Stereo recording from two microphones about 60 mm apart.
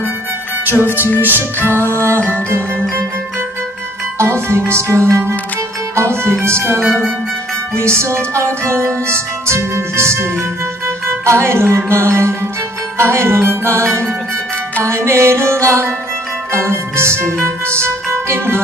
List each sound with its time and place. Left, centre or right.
0.7 s music: right
4.2 s music: right
6.8 s music: centre
7.7 s music: right